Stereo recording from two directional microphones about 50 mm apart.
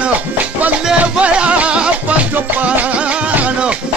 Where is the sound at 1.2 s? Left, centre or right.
Right.